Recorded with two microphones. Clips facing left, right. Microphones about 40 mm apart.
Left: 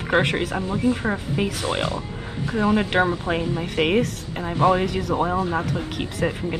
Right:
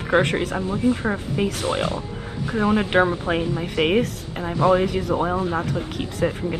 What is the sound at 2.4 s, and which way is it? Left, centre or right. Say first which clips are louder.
Speech: even; right.